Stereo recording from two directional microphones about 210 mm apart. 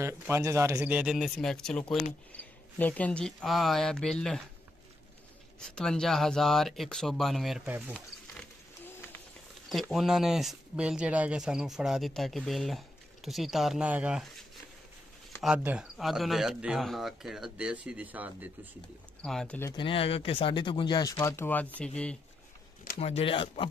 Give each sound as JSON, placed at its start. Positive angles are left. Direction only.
{"t": 0.0, "sound": "speech", "side_deg": -15}
{"t": 5.6, "sound": "speech", "side_deg": 5}
{"t": 9.7, "sound": "speech", "side_deg": 0}
{"t": 15.4, "sound": "speech", "side_deg": -5}
{"t": 19.2, "sound": "speech", "side_deg": 5}
{"t": 19.7, "sound": "speech", "side_deg": 25}
{"t": 22.9, "sound": "speech", "side_deg": 30}